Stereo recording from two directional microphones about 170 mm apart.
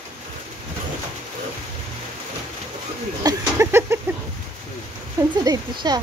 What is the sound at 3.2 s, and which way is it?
Speech, 15° right (ahead or behind).